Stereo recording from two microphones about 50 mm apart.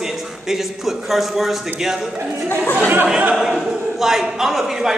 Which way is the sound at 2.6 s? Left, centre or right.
Left.